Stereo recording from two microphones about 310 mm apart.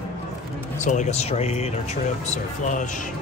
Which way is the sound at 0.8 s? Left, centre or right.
Left.